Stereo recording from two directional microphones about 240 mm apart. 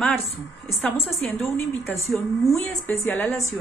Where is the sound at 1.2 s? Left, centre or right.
Centre.